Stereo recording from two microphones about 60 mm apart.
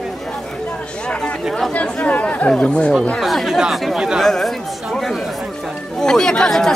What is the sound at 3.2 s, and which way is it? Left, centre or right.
Speech, centre.